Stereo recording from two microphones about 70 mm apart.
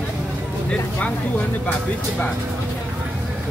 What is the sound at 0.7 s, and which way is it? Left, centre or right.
Vehicle, centre.